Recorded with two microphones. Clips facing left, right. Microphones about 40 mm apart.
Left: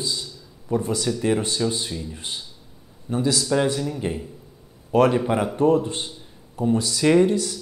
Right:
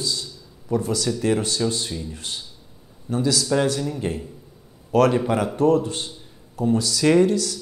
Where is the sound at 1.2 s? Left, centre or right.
Centre.